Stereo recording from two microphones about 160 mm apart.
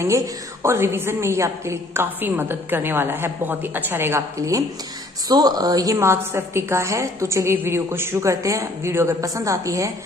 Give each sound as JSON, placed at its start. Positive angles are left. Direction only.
{"t": 0.0, "sound": "a woman's voice", "side_deg": -20}